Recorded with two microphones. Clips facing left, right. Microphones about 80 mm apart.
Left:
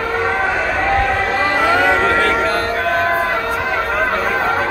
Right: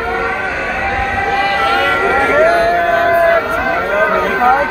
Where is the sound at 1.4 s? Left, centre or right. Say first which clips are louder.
Right 1 dB; centre.